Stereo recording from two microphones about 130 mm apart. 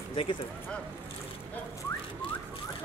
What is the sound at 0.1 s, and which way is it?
Speech, 40° left (ahead or behind).